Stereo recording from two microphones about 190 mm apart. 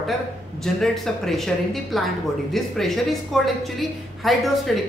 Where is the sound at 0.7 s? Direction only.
Centre (ahead or behind).